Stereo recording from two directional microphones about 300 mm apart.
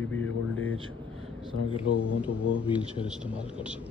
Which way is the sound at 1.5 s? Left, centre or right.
Right.